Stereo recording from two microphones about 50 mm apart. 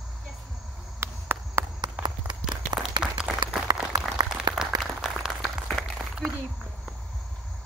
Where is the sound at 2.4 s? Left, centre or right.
Centre.